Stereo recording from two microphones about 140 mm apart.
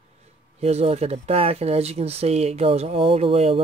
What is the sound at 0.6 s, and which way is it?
Speech, 50° right (ahead or behind).